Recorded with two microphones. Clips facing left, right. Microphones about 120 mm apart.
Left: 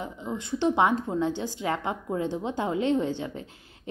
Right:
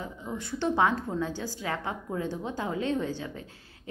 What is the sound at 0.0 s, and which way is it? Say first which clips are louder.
A woman's voice: left 3 dB; 20° left (ahead or behind).